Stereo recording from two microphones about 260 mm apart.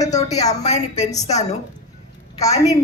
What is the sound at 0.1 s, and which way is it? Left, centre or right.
A man's voice, left.